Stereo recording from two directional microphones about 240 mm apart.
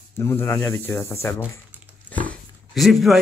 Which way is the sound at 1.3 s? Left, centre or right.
Centre.